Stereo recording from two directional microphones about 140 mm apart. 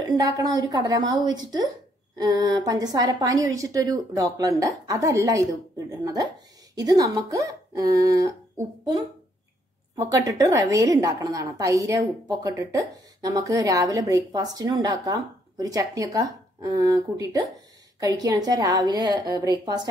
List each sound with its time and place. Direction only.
0.0 s a woman's voice: 25° right (ahead or behind)